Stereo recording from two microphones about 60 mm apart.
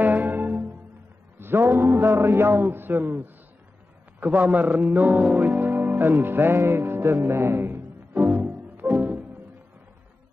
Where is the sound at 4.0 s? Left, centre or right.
Right.